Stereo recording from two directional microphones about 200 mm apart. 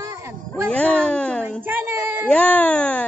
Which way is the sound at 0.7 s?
5° left (ahead or behind).